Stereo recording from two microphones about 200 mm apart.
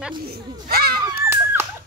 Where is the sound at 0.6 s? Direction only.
50° right (ahead or behind).